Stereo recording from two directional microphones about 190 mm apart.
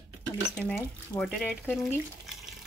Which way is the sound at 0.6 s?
10° left (ahead or behind).